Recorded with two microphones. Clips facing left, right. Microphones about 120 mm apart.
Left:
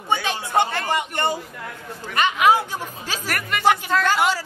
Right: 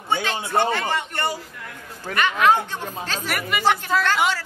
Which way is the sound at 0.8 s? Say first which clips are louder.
Left 2 dB; 15° left (ahead or behind).